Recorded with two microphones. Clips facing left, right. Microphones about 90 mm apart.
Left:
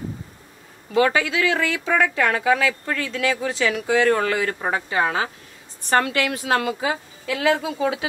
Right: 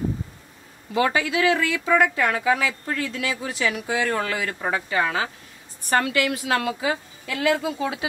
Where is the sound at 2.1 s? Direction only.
60° left (ahead or behind).